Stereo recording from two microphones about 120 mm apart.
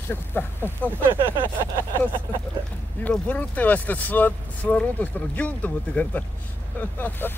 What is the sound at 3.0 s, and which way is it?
Speech, 15° left (ahead or behind).